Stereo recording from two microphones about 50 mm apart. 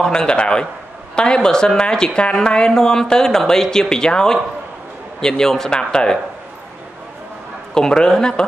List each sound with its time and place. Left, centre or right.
0.0 s speech: centre
7.7 s speech: centre